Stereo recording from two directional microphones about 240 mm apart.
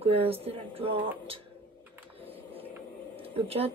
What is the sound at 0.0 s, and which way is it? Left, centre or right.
Speech, right.